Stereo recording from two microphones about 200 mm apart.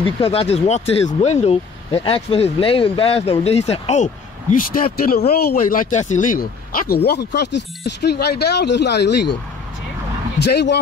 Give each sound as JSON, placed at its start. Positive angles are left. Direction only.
{"t": 0.0, "sound": "speech", "side_deg": 30}
{"t": 10.4, "sound": "speech", "side_deg": 55}